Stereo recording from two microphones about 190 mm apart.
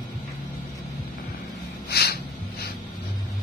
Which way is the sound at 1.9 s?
55° left (ahead or behind).